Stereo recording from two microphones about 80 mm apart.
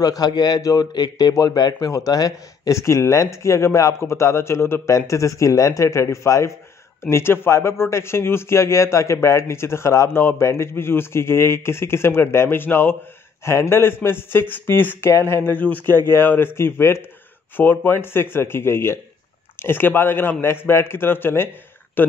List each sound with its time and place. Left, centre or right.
0.0 s a man's voice: left
1.9 s a man's voice: left